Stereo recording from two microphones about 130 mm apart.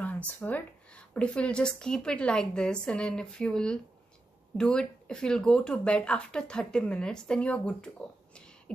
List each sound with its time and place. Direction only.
0.4 s speech: 15° left (ahead or behind)
8.7 s beatboxing: 10° left (ahead or behind)